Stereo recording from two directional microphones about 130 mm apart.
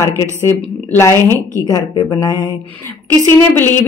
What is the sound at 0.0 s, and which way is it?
A woman's voice, 20° left (ahead or behind).